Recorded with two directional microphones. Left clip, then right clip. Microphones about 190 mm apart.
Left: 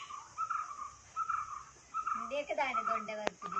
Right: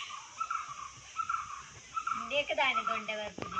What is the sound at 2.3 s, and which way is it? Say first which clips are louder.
Fowl: right 8 dB; 25° left (ahead or behind).